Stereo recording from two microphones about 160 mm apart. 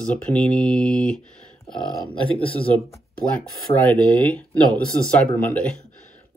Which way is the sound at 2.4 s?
35° left (ahead or behind).